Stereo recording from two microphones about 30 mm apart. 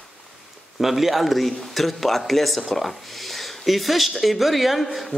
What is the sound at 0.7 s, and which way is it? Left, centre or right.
A man's voice, centre.